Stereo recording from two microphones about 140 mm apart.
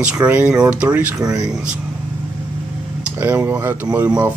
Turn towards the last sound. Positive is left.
turn(degrees=-10)  # may be behind; listen again after turning